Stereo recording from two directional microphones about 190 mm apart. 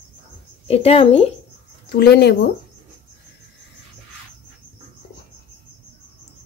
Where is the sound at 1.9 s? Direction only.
60° left (ahead or behind).